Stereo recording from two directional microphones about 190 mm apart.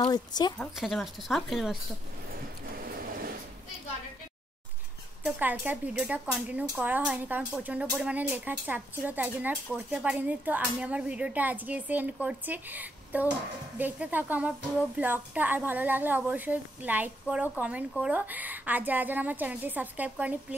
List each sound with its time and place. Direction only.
0.1 s speech: 20° left (ahead or behind)
0.6 s speech: centre (ahead or behind)
5.2 s a woman's voice: 10° right (ahead or behind)